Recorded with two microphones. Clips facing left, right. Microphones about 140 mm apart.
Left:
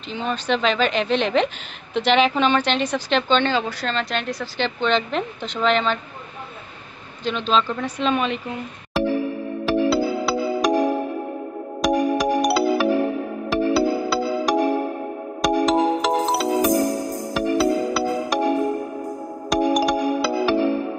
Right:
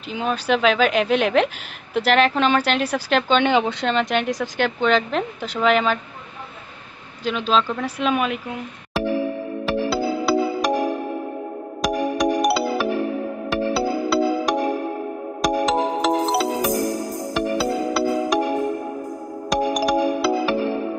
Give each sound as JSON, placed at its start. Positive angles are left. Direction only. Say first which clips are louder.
{"t": 0.1, "sound": "speech", "louder": "right 2 dB", "side_deg": -5}
{"t": 3.5, "sound": "speech", "louder": "right 4 dB", "side_deg": -20}
{"t": 7.2, "sound": "speech", "louder": "right 1 dB", "side_deg": -5}
{"t": 9.7, "sound": "music", "louder": "left 3 dB", "side_deg": 0}
{"t": 11.8, "sound": "music", "louder": "left 2 dB", "side_deg": 0}
{"t": 19.5, "sound": "music", "louder": "left 1 dB", "side_deg": 0}